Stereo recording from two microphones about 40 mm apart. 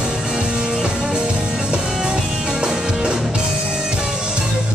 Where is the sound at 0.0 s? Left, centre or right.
Centre.